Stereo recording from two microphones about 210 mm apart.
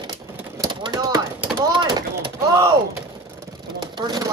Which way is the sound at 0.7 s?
20° right (ahead or behind).